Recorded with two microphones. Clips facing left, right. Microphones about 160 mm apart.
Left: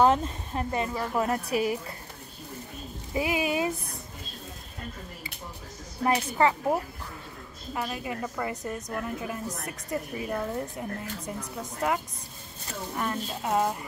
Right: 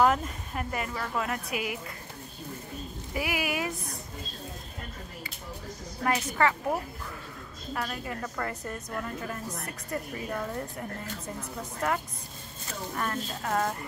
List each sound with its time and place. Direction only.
0.0 s speech: 30° left (ahead or behind)
1.3 s a woman's voice: 35° left (ahead or behind)
3.1 s speech: 25° left (ahead or behind)
6.0 s a woman's voice: 20° left (ahead or behind)